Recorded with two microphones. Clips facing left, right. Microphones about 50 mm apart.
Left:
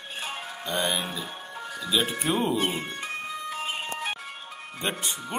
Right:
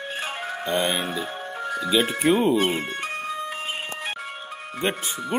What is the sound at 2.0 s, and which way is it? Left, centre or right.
Speech, right.